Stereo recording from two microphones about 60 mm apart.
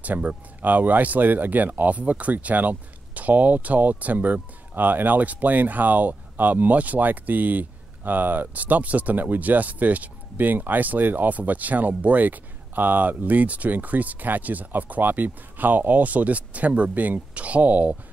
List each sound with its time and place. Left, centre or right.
0.0 s speech: right